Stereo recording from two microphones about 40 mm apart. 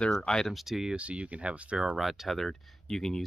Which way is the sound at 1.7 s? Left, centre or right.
Centre.